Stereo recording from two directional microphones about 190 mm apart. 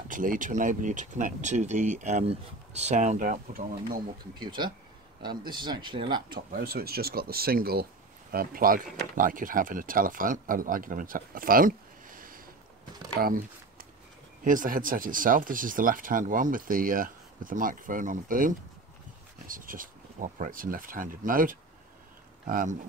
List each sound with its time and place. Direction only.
0.1 s speech: 45° right (ahead or behind)
4.4 s speech: 25° right (ahead or behind)
6.5 s speech: 50° right (ahead or behind)
13.2 s a sound: 45° right (ahead or behind)
14.4 s speech: 45° right (ahead or behind)